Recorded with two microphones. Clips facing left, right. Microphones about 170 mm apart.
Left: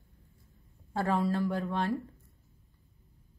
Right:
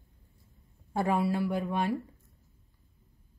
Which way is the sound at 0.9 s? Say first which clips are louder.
Right 1 dB; 15° right (ahead or behind).